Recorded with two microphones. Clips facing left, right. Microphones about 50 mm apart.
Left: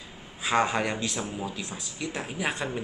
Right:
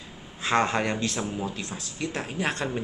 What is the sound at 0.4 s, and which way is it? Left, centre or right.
Speech, centre.